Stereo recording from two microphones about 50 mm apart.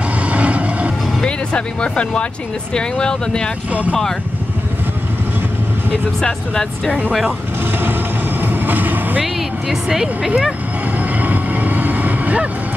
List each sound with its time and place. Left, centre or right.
0.3 s vehicle: right
1.2 s speech: left
6.2 s speech: centre
8.4 s vehicle: right
9.2 s speech: centre
11.1 s vehicle: right